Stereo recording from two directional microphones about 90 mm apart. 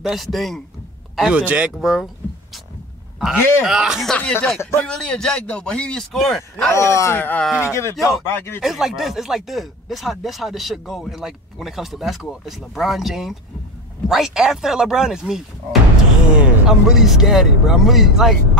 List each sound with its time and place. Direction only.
0.0 s speech: centre (ahead or behind)
1.1 s speech: 10° right (ahead or behind)
3.2 s speech: 5° right (ahead or behind)
4.1 s speech: 20° left (ahead or behind)
4.8 s a man's voice: 10° left (ahead or behind)
6.7 s speech: 35° left (ahead or behind)
7.9 s speech: centre (ahead or behind)